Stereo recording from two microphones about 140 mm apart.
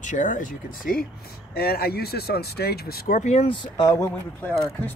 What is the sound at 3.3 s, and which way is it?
Speech, 40° left (ahead or behind).